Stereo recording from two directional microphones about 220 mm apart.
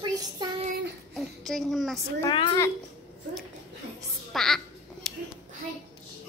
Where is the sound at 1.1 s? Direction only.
Centre (ahead or behind).